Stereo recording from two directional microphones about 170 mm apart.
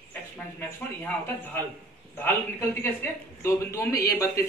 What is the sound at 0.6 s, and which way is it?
A man's voice, 10° left (ahead or behind).